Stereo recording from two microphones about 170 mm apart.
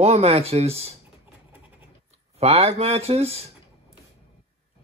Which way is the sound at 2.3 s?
35° right (ahead or behind).